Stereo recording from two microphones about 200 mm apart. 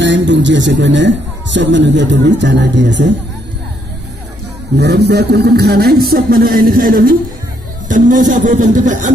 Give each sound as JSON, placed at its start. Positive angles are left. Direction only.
{"t": 0.0, "sound": "a man's voice", "side_deg": -65}
{"t": 4.7, "sound": "a man's voice", "side_deg": -55}